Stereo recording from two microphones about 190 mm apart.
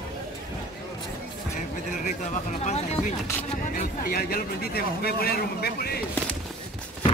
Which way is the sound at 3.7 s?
50° left (ahead or behind).